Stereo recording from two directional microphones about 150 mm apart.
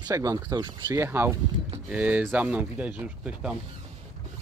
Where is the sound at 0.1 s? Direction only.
20° right (ahead or behind).